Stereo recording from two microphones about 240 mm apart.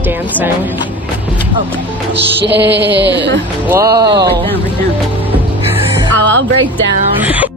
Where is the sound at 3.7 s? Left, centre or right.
Centre.